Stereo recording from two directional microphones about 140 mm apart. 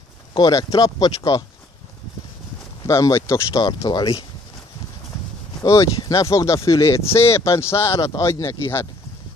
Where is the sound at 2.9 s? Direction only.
25° left (ahead or behind).